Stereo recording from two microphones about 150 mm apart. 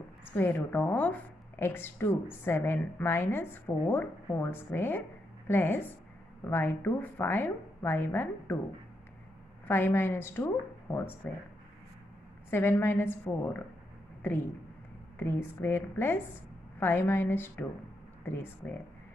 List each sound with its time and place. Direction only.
0.4 s a woman's voice: 15° left (ahead or behind)
9.7 s a woman's voice: 15° left (ahead or behind)
12.4 s a woman's voice: 15° left (ahead or behind)
15.1 s a woman's voice: 15° left (ahead or behind)